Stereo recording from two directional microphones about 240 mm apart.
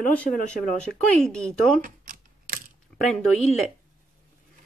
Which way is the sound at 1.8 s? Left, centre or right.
Right.